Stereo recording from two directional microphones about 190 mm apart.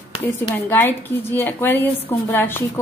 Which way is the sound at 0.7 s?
10° left (ahead or behind).